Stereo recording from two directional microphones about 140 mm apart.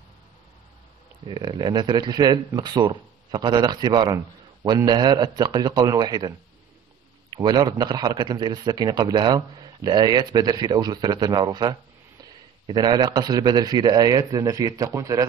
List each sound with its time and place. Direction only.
1.2 s a man's voice: 35° right (ahead or behind)
7.3 s a man's voice: 30° right (ahead or behind)